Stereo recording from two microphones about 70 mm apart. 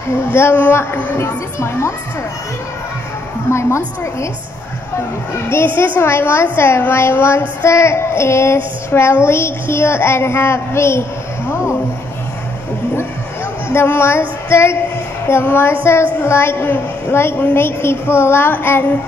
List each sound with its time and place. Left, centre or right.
0.3 s a woman's voice: left
1.2 s a woman's voice: left
3.4 s a woman's voice: left
5.5 s a woman's voice: left
13.7 s a woman's voice: left